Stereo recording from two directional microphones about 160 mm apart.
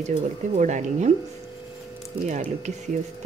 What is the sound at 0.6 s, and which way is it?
Speech, 50° right (ahead or behind).